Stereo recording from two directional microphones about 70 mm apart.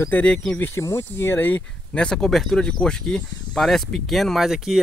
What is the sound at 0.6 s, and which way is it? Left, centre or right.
Speech, left.